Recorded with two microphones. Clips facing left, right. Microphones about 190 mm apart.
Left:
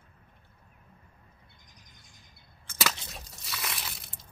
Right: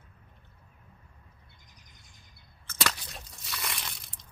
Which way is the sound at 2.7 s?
15° left (ahead or behind).